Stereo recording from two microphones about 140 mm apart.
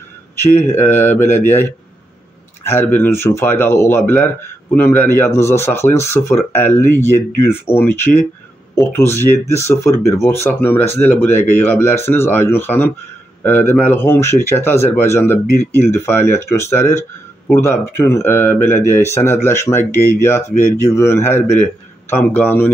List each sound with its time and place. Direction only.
0.6 s speech: 15° left (ahead or behind)
2.7 s speech: 15° left (ahead or behind)